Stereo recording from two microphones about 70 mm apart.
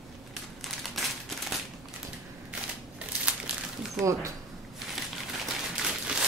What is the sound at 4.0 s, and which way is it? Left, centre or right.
Speech, right.